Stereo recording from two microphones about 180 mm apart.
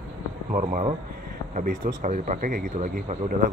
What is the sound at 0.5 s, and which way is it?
Speech, 40° right (ahead or behind).